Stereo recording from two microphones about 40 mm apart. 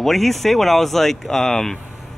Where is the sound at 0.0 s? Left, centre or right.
Centre.